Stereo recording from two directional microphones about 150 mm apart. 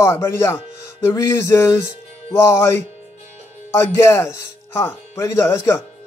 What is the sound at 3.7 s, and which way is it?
Speech, 20° left (ahead or behind).